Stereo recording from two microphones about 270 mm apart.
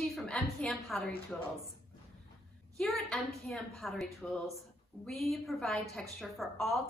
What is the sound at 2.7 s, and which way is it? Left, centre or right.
A woman's voice, centre.